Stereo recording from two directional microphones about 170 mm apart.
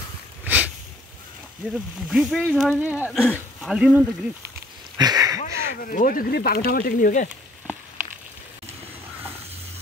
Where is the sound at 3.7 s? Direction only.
5° right (ahead or behind).